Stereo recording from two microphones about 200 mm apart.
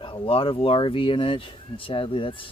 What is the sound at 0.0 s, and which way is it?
Speech, 25° left (ahead or behind).